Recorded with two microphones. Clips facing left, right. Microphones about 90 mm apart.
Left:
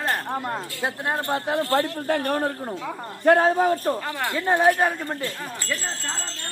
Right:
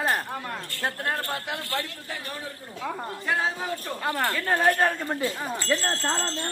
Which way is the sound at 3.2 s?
50° left (ahead or behind).